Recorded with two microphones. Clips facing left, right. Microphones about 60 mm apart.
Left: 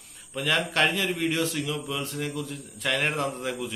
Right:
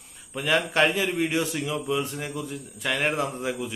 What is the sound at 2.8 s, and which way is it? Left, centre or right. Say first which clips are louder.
Speech: right 1 dB; centre.